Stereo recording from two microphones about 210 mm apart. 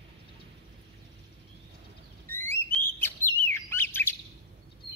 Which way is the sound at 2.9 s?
10° left (ahead or behind).